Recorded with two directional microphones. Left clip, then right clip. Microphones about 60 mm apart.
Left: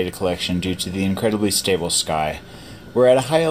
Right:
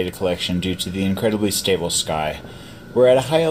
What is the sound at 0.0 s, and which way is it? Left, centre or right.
Speech, left.